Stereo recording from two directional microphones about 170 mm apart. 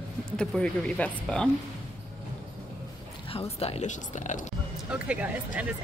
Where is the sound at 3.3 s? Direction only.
35° left (ahead or behind).